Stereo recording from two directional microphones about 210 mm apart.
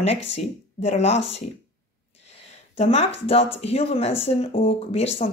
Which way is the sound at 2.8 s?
30° left (ahead or behind).